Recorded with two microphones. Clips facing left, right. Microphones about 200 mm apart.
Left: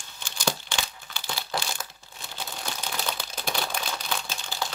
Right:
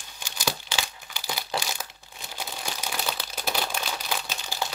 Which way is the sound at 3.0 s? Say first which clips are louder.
Right 1 dB; 5° right (ahead or behind).